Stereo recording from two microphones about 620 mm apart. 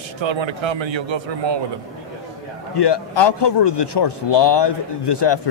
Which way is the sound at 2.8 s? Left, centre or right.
Left.